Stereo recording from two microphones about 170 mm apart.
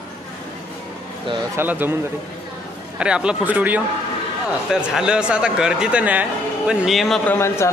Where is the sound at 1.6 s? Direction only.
10° right (ahead or behind).